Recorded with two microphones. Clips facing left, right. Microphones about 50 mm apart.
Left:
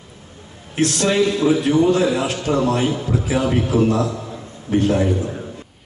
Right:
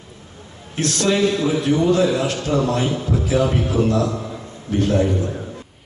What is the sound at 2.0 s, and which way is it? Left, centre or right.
A man's voice, centre.